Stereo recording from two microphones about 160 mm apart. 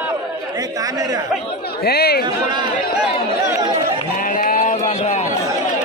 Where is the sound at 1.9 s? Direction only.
80° left.